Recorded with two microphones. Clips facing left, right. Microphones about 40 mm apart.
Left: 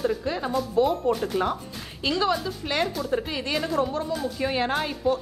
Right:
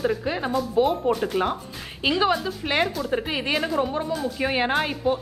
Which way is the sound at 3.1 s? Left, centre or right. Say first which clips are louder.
Right 2 dB; right.